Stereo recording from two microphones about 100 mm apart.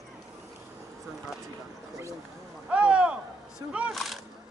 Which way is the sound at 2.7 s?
10° right (ahead or behind).